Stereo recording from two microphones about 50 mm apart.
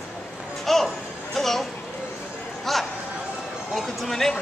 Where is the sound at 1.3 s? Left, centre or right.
Centre.